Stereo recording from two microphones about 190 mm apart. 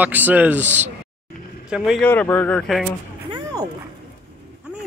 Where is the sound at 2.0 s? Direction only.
10° left (ahead or behind).